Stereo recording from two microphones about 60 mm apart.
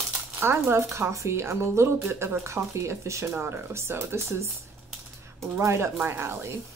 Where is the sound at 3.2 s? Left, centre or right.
Right.